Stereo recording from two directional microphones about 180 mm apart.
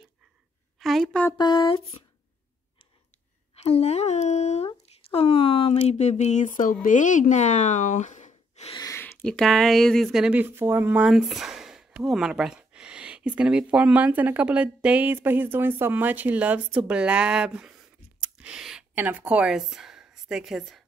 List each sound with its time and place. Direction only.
0.7 s a woman's voice: centre (ahead or behind)
1.4 s speech: 25° left (ahead or behind)
3.6 s speech: 35° left (ahead or behind)
8.7 s speech: 15° left (ahead or behind); by 20.8 s centre (ahead or behind)